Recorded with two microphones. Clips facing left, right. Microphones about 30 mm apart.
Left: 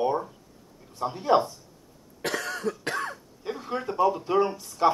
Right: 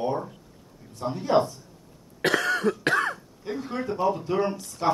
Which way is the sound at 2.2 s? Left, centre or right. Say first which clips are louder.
Right 6 dB; right.